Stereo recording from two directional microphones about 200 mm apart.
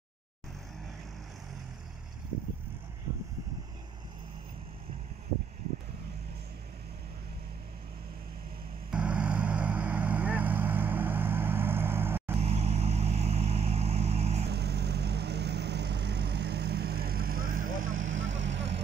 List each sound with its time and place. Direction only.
8.9 s vehicle: 5° right (ahead or behind)
12.4 s vehicle: 30° right (ahead or behind)
14.5 s vehicle: 55° right (ahead or behind)
17.7 s vehicle: 75° right (ahead or behind)